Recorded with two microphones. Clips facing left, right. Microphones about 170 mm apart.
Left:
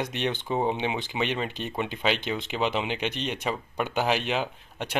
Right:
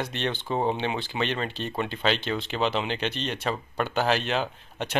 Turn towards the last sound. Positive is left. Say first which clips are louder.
# right 2 dB
turn(degrees=10)  # may be behind; listen again after turning